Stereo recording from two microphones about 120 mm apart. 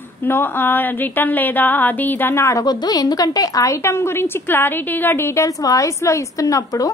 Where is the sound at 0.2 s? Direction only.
15° left (ahead or behind).